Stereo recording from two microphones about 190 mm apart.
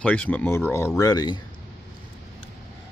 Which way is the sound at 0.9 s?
20° left (ahead or behind).